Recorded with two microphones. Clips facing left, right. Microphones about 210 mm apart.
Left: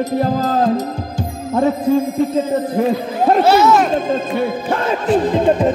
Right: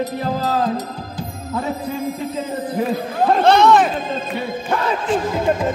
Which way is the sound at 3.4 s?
5° left (ahead or behind).